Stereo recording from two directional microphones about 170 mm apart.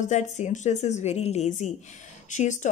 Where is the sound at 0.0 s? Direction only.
45° left (ahead or behind).